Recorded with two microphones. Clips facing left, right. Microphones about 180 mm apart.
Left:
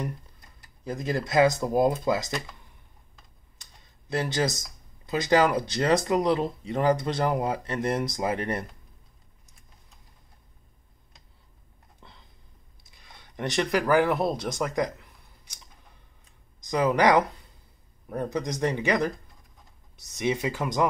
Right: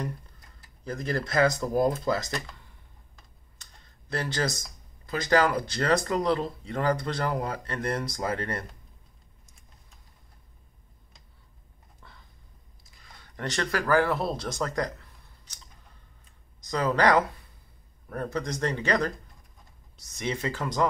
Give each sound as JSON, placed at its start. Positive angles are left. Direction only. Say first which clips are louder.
{"t": 0.8, "sound": "speech", "louder": "left 1 dB", "side_deg": 20}
{"t": 3.5, "sound": "computer keyboard", "louder": "even", "side_deg": 15}
{"t": 5.0, "sound": "speech", "louder": "left 2 dB", "side_deg": 15}
{"t": 12.0, "sound": "a sound", "louder": "left 1 dB", "side_deg": 20}
{"t": 13.0, "sound": "speech", "louder": "left 3 dB", "side_deg": 15}
{"t": 16.7, "sound": "speech", "louder": "left 2 dB", "side_deg": 15}
{"t": 20.2, "sound": "speech", "louder": "left 4 dB", "side_deg": 10}